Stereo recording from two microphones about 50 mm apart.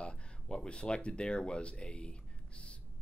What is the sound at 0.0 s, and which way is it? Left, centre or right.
Speech, left.